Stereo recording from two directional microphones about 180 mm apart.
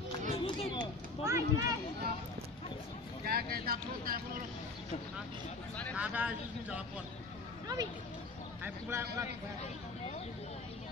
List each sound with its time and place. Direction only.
0.3 s a sound: 30° left (ahead or behind)
1.2 s speech: 15° right (ahead or behind)
3.3 s speech: 55° right (ahead or behind)
5.9 s speech: 5° right (ahead or behind)
7.6 s speech: 20° right (ahead or behind)